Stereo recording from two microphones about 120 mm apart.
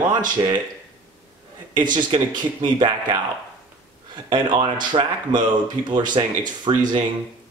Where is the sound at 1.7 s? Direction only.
40° right (ahead or behind).